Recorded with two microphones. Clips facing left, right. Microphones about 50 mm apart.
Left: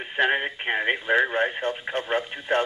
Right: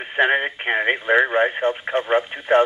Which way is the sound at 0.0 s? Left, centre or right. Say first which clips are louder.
Right 4 dB; centre.